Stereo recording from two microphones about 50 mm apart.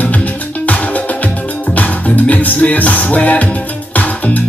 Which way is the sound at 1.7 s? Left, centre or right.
Left.